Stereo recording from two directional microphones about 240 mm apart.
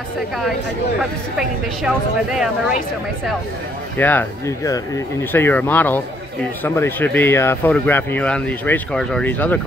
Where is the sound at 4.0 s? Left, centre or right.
Centre.